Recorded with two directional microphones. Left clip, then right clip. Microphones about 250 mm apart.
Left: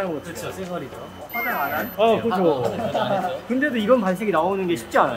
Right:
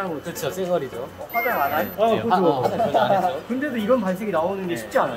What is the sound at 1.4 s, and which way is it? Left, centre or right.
Speech, centre.